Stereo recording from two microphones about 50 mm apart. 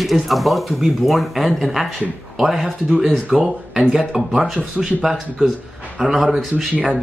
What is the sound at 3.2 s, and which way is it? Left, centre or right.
Speech, right.